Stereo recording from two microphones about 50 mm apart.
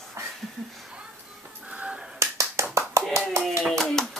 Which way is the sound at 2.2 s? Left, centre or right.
Right.